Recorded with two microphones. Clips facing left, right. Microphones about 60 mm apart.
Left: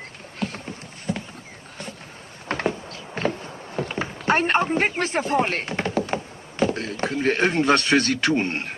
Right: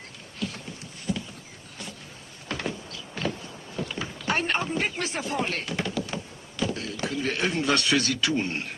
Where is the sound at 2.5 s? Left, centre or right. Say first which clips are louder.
Left 7 dB; left.